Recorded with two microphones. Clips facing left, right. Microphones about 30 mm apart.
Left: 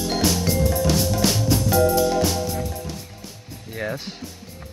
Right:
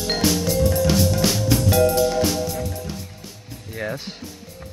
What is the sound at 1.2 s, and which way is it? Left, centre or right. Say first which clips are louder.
Music: even; centre.